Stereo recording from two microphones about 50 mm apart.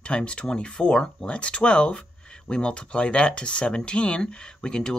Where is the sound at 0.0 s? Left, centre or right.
Centre.